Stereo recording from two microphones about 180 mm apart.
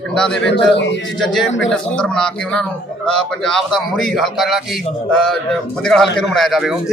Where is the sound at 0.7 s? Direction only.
80° left.